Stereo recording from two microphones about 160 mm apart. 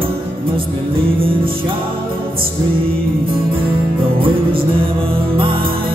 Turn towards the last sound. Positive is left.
turn(degrees=-35)  # may be behind; listen again after turning